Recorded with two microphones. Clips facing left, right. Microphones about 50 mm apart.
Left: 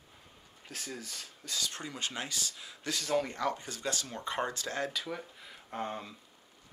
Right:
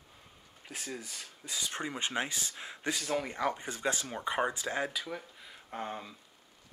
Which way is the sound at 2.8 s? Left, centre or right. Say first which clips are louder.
Left 1 dB; centre.